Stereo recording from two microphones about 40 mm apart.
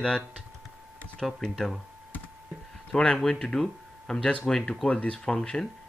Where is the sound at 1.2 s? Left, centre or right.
Centre.